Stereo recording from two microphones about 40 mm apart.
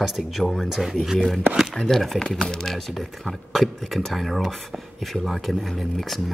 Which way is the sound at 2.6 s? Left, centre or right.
Centre.